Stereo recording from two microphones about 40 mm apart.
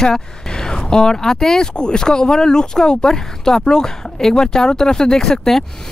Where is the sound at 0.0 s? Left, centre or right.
Centre.